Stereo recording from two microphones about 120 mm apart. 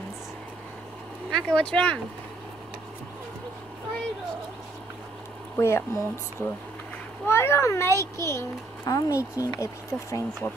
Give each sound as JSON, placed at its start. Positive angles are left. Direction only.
{"t": 1.3, "sound": "speech", "side_deg": 5}
{"t": 5.6, "sound": "a child's voice", "side_deg": 20}